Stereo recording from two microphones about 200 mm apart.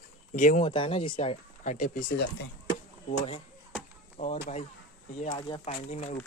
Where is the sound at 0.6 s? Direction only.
25° left (ahead or behind).